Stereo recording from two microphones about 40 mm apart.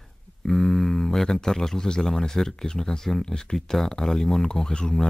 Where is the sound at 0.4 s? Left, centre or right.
Centre.